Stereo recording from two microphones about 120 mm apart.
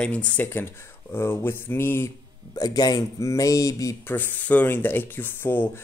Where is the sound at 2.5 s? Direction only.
35° left (ahead or behind).